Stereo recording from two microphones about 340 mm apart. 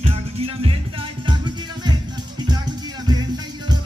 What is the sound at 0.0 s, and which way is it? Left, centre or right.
Music, centre.